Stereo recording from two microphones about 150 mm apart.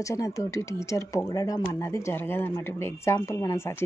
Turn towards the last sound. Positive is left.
turn(degrees=20)  # may be behind; listen again after turning